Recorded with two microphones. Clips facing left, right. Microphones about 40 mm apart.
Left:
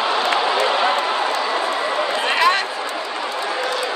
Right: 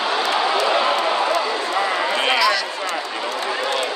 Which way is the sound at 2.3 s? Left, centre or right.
Left.